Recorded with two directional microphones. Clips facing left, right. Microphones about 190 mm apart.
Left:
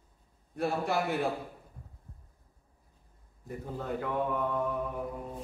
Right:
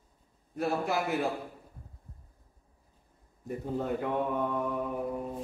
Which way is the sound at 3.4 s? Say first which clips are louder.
Right 5 dB; 20° right (ahead or behind).